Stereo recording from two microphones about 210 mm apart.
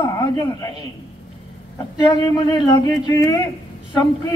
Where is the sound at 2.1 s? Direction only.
20° left (ahead or behind).